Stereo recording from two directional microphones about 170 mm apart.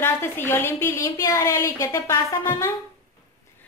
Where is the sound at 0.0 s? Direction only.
15° left (ahead or behind).